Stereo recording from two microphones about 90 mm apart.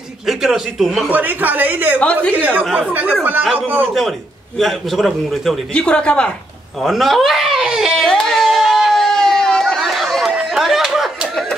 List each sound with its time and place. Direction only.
0.3 s a man's voice: 5° right (ahead or behind)
1.1 s speech: 20° right (ahead or behind)
2.0 s a woman's voice: 15° left (ahead or behind)
2.9 s speech: 15° right (ahead or behind)
4.6 s a man's voice: centre (ahead or behind)
5.8 s a woman's voice: 10° left (ahead or behind)
6.8 s speech: centre (ahead or behind)
8.0 s a sound: 5° left (ahead or behind)
9.8 s chatter: centre (ahead or behind)
10.3 s a sound: 5° right (ahead or behind)